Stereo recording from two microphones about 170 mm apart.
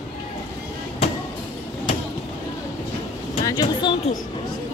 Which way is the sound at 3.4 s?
25° left (ahead or behind).